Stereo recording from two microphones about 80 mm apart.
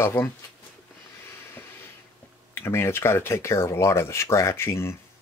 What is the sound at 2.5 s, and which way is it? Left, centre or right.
Speech, left.